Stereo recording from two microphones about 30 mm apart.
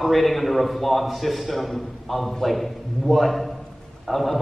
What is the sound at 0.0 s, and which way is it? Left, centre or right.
A man's voice, centre.